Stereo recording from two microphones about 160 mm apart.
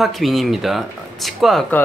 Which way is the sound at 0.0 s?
Centre (ahead or behind).